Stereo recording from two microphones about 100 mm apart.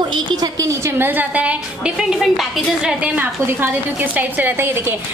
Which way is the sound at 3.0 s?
15° right (ahead or behind).